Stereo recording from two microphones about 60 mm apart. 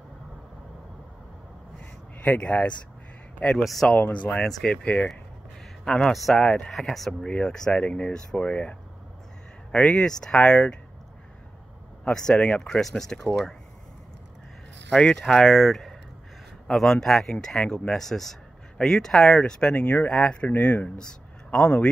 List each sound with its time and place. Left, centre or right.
2.2 s speech: left
3.6 s speech: centre
3.9 s speech: left
4.4 s speech: centre
5.9 s speech: centre
6.4 s speech: centre
6.7 s speech: centre
7.2 s speech: centre
12.0 s speech: centre
15.0 s speech: centre